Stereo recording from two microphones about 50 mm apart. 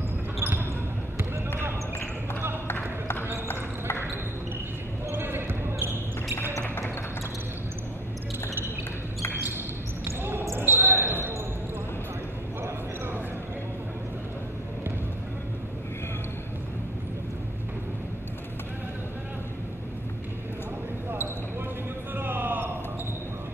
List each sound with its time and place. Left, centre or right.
0.4 s basketball bounce: right
3.4 s basketball bounce: left
5.1 s basketball bounce: right
10.0 s basketball bounce: right
22.1 s a sound: right